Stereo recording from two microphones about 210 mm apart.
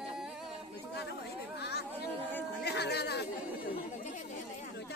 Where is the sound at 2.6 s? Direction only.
50° left (ahead or behind).